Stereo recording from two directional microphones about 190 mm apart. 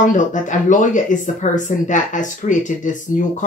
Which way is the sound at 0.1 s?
40° left (ahead or behind).